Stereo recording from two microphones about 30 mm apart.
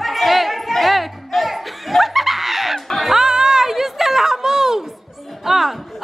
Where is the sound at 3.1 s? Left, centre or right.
Right.